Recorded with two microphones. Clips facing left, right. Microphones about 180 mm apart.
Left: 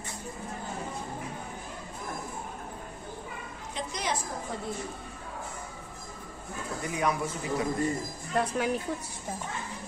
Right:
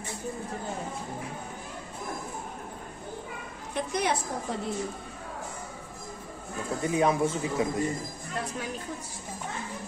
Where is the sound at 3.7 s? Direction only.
60° right (ahead or behind).